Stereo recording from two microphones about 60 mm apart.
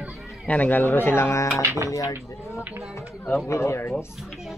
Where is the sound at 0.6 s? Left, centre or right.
Left.